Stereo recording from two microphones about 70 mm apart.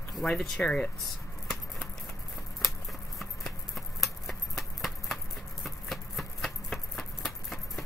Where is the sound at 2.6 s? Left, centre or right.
Centre.